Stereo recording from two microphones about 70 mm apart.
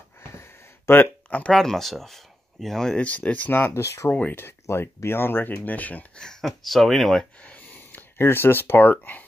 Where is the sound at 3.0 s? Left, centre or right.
Centre.